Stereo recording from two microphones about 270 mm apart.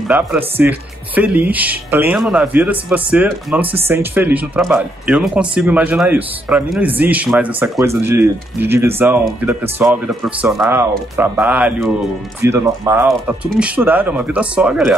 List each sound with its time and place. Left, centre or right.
0.1 s speech: centre